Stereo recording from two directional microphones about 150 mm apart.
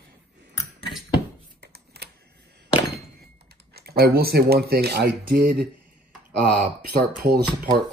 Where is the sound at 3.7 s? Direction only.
90° right.